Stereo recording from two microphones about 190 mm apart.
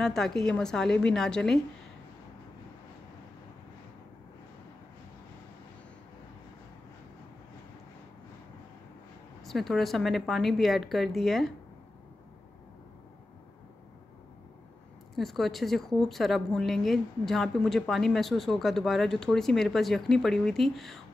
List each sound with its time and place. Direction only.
0.0 s a woman's voice: 5° left (ahead or behind)
9.4 s a woman's voice: centre (ahead or behind)
15.1 s a woman's voice: centre (ahead or behind)